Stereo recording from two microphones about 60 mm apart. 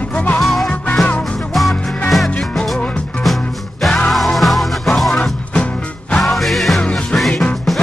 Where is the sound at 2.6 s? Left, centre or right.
Centre.